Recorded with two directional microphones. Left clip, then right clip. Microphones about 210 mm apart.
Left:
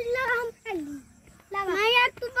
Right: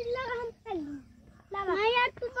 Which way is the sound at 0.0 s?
15° left (ahead or behind).